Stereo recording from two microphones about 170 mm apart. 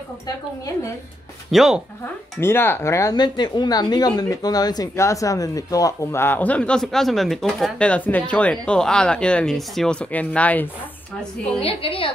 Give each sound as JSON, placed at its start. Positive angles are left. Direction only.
{"t": 1.5, "sound": "speech", "side_deg": 0}
{"t": 2.4, "sound": "speech", "side_deg": 15}
{"t": 11.6, "sound": "a woman's voice", "side_deg": 30}